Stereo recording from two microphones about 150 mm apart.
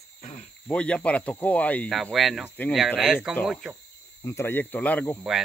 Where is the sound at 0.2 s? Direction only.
50° left (ahead or behind).